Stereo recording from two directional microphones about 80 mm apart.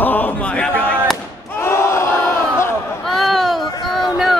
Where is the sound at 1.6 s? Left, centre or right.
Left.